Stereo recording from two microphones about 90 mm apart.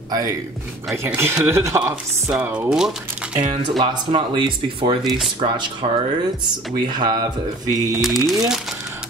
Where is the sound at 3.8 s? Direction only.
65° right (ahead or behind); by 4.9 s 80° right.